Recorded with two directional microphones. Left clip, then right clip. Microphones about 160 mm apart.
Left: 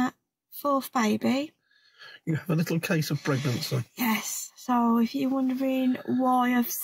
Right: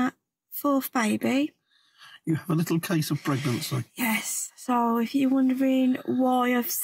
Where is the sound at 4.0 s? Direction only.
30° right (ahead or behind).